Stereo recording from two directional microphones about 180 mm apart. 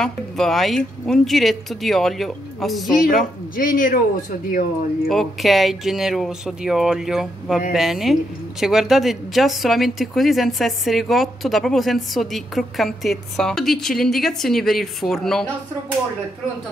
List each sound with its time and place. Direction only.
0.0 s a woman's voice: centre (ahead or behind)
3.5 s speech: 50° left (ahead or behind)
5.0 s a woman's voice: centre (ahead or behind)